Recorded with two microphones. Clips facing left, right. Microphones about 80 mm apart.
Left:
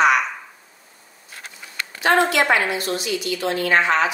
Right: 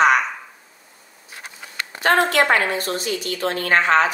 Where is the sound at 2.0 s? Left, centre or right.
Right.